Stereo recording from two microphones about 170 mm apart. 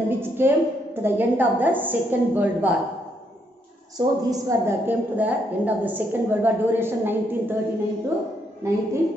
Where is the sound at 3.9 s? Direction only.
20° right (ahead or behind).